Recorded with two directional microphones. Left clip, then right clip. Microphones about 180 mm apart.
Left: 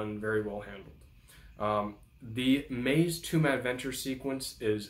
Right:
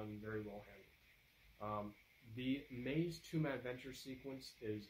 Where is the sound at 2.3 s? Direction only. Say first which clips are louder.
Left 15 dB; 20° right (ahead or behind).